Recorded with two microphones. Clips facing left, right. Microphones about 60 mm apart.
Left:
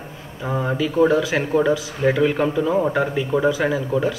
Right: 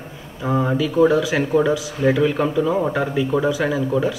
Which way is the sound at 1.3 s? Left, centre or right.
Centre.